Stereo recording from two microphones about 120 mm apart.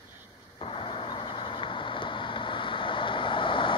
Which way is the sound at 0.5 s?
45° left (ahead or behind).